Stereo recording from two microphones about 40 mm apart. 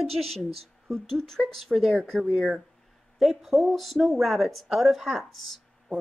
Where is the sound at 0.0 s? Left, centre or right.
Centre.